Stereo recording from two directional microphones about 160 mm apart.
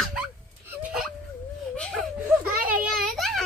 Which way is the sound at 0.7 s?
10° right (ahead or behind).